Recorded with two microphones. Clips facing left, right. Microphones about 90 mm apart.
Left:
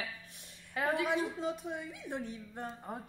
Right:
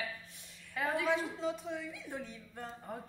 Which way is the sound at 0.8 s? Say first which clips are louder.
Left 1 dB; 15° left (ahead or behind).